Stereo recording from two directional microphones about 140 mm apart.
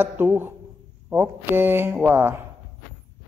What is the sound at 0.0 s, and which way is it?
Speech, 15° right (ahead or behind).